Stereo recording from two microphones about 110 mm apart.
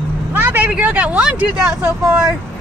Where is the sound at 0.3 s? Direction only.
20° right (ahead or behind).